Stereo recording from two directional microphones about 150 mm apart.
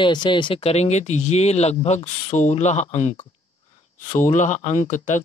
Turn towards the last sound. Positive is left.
turn(degrees=55)  # may be behind; listen again after turning